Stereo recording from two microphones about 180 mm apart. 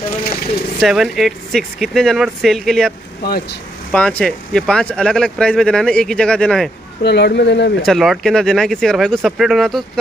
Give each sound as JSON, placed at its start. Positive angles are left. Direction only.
{"t": 0.2, "sound": "speech", "side_deg": 55}
{"t": 0.7, "sound": "speech", "side_deg": -5}
{"t": 3.3, "sound": "speech", "side_deg": 55}
{"t": 3.9, "sound": "speech", "side_deg": 5}
{"t": 7.0, "sound": "speech", "side_deg": 70}
{"t": 7.8, "sound": "speech", "side_deg": 0}